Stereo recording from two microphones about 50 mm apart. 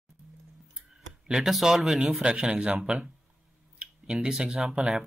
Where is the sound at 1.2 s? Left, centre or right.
Centre.